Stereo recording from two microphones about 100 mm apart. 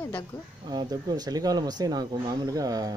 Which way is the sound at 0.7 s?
45° right (ahead or behind).